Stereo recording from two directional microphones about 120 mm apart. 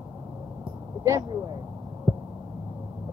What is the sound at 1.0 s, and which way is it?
Speech, 25° right (ahead or behind).